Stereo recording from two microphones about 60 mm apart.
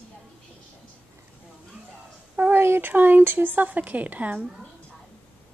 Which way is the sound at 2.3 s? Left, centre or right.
Right.